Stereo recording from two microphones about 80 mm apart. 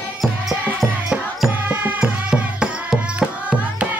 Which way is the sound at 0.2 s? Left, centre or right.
Centre.